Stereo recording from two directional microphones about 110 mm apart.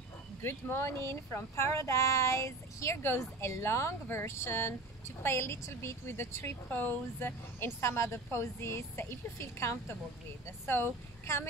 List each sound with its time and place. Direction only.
0.4 s speech: 20° left (ahead or behind)